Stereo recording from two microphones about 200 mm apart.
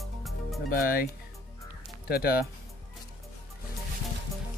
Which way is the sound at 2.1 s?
50° left (ahead or behind).